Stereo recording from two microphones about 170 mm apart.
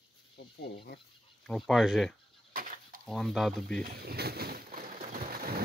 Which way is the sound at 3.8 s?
65° right (ahead or behind).